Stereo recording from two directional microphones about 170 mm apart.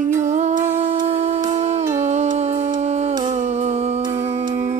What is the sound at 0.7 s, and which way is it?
Humming, 40° right (ahead or behind).